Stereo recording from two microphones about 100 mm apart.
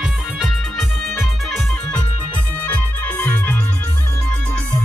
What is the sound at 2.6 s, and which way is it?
Music, 15° left (ahead or behind).